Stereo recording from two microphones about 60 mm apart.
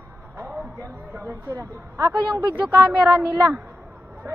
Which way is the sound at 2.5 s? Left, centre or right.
Right.